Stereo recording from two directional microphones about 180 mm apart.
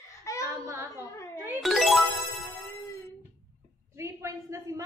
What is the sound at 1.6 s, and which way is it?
Music, centre (ahead or behind).